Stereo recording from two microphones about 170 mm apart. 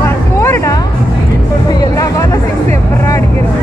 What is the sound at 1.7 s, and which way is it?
Music, 20° left (ahead or behind).